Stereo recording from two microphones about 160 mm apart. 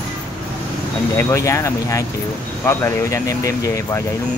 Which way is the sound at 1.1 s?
20° left (ahead or behind).